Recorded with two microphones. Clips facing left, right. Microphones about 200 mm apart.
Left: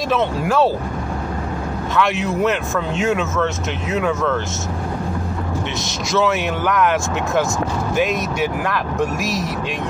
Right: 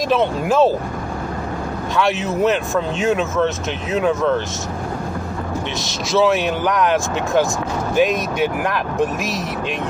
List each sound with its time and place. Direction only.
0.1 s speech: 15° right (ahead or behind)
2.2 s speech: 20° right (ahead or behind)
7.9 s speech: 20° left (ahead or behind)
8.6 s speech: 20° right (ahead or behind)